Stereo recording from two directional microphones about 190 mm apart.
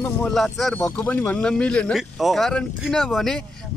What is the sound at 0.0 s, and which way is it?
Speech, 5° left (ahead or behind).